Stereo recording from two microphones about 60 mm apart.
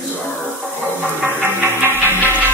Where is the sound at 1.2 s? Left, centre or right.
Right.